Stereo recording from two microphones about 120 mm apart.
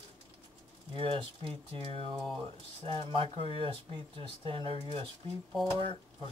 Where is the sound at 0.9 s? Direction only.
50° right (ahead or behind).